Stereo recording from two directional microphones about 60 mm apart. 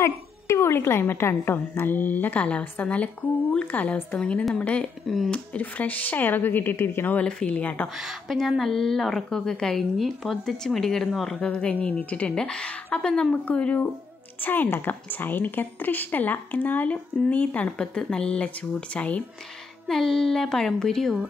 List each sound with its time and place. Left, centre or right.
0.0 s a woman's voice: left
5.0 s a woman's voice: centre
5.3 s a woman's voice: left
7.2 s a woman's voice: centre
7.9 s a woman's voice: centre; by 12.3 s left
12.3 s a woman's voice: centre
14.4 s a woman's voice: left
19.9 s a woman's voice: centre